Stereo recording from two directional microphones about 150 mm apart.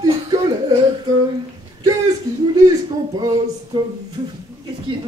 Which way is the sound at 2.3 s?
20° right (ahead or behind).